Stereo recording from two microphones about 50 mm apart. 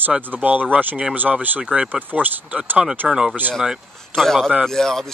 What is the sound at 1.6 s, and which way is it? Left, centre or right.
Speech, centre.